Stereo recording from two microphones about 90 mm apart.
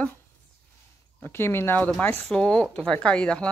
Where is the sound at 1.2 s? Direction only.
25° left (ahead or behind).